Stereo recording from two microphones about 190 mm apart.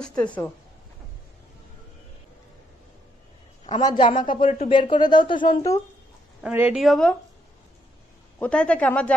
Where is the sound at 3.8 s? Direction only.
25° left (ahead or behind).